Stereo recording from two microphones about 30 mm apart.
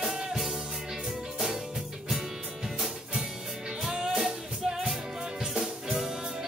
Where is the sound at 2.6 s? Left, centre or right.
Centre.